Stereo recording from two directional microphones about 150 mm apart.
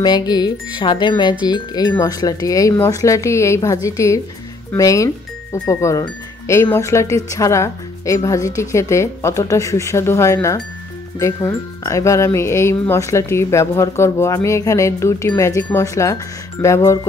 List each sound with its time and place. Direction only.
0.0 s speech: 30° left (ahead or behind)